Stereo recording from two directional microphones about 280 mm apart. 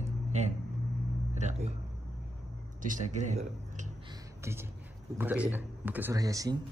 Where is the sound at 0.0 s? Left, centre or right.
Right.